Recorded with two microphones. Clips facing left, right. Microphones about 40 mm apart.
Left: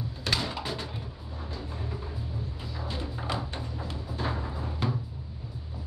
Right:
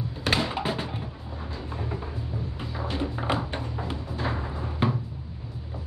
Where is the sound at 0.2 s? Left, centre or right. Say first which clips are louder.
Right 5 dB; right.